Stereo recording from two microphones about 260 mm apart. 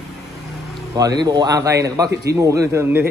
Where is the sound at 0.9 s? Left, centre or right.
Centre.